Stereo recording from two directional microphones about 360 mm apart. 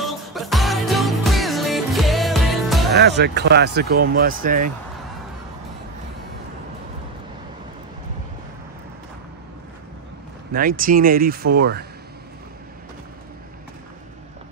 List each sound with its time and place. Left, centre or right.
0.0 s music: centre
2.9 s speech: right
10.5 s speech: right